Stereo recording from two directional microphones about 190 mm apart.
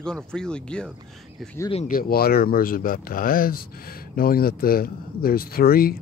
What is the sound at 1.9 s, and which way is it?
Speech, 50° left (ahead or behind).